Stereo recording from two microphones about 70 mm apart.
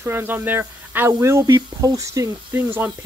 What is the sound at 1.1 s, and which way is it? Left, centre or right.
Speech, right.